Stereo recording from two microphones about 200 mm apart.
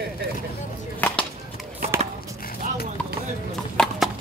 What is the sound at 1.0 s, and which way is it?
Music, 10° left (ahead or behind).